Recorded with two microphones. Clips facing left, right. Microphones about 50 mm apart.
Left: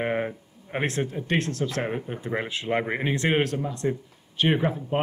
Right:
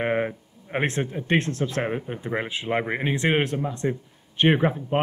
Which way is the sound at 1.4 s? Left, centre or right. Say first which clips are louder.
Right 1 dB; right.